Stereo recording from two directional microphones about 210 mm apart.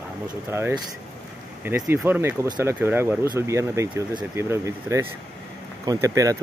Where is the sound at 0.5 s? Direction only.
10° right (ahead or behind).